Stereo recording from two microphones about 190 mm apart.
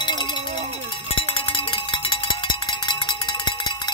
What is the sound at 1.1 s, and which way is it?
Cowbell, 25° left (ahead or behind).